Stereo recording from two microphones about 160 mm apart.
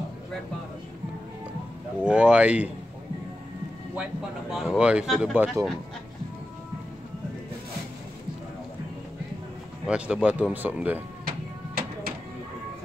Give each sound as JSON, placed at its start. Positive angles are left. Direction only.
{"t": 2.0, "sound": "speech", "side_deg": -5}
{"t": 3.9, "sound": "speech", "side_deg": -5}
{"t": 9.8, "sound": "speech", "side_deg": -5}
{"t": 11.2, "sound": "music", "side_deg": -70}